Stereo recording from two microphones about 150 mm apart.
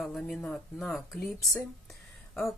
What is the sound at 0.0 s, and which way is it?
Speech, 5° left (ahead or behind).